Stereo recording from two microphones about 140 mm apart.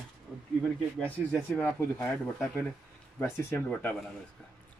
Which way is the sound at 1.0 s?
10° left (ahead or behind).